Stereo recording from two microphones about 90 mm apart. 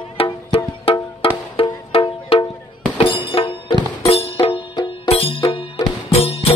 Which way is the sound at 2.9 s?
70° left (ahead or behind).